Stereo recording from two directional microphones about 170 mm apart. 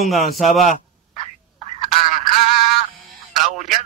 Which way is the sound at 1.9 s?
Centre (ahead or behind).